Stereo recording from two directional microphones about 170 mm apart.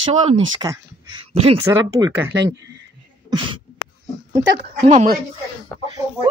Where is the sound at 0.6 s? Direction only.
25° right (ahead or behind).